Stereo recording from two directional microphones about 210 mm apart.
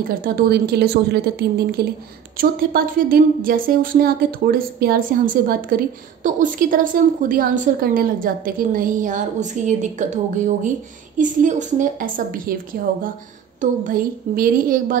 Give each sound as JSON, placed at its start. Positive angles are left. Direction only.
{"t": 0.2, "sound": "a woman's voice", "side_deg": -45}